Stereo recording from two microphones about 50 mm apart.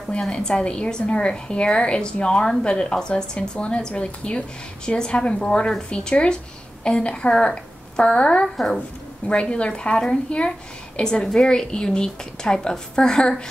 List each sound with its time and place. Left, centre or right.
0.3 s a woman's voice: centre